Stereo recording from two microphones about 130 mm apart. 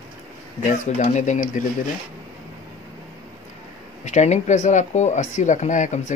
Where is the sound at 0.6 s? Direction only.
70° left (ahead or behind).